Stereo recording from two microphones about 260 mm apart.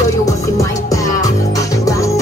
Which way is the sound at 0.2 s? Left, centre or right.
Centre.